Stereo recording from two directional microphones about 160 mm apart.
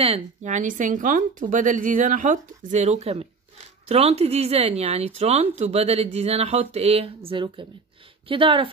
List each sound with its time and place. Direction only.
0.0 s speech: 40° right (ahead or behind)